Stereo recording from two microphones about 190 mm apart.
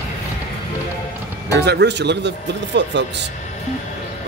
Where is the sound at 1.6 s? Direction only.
60° right (ahead or behind).